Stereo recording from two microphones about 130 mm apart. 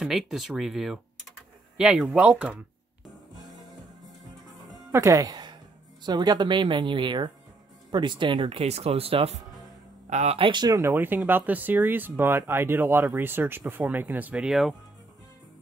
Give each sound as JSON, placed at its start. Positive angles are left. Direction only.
{"t": 0.0, "sound": "speech", "side_deg": 0}
{"t": 4.9, "sound": "a woman's voice", "side_deg": -25}
{"t": 10.9, "sound": "speech", "side_deg": -15}